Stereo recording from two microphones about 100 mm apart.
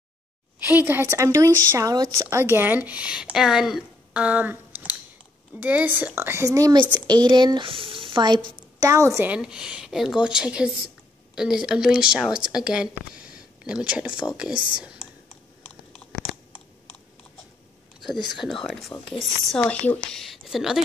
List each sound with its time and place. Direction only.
0.6 s a woman's voice: 20° right (ahead or behind)
1.0 s a woman's voice: 30° right (ahead or behind)
7.1 s speech: 45° right (ahead or behind)
7.6 s a woman's voice: 65° right (ahead or behind); by 9.2 s 30° right (ahead or behind)
9.2 s a woman's voice: 10° right (ahead or behind)
16.0 s chewing: 20° left (ahead or behind)
18.2 s speech: centre (ahead or behind)